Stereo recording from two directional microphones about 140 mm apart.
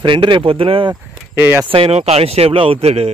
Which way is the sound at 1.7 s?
40° right (ahead or behind).